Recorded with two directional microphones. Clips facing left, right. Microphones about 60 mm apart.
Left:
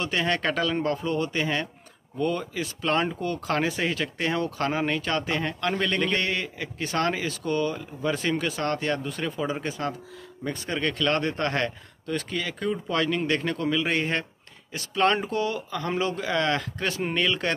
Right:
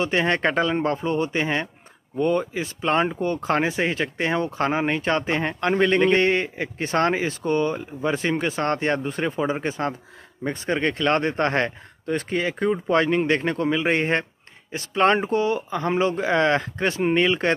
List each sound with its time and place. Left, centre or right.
0.0 s speech: right